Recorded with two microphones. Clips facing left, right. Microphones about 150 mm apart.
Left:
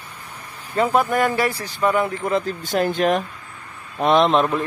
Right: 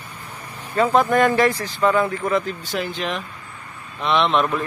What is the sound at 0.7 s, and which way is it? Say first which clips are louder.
Speech: right 2 dB; 10° left (ahead or behind).